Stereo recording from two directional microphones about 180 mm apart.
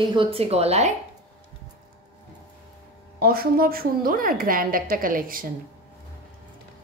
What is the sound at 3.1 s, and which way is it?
A woman's voice, 55° right (ahead or behind).